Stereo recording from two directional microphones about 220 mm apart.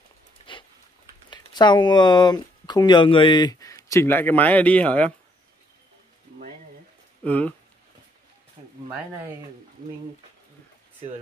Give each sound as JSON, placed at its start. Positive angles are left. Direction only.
{"t": 1.3, "sound": "speech", "side_deg": 20}
{"t": 7.2, "sound": "speech", "side_deg": 5}